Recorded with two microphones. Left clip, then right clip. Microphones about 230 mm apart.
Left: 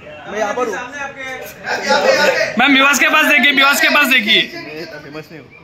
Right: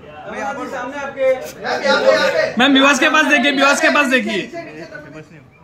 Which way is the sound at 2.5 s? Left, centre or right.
Centre.